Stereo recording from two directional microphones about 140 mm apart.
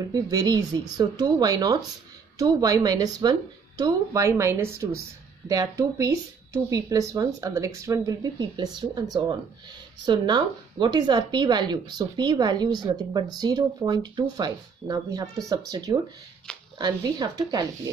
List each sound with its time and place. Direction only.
0.1 s speech: 25° right (ahead or behind)